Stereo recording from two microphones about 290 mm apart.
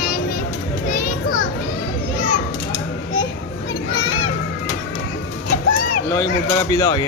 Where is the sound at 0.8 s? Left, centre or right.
Left.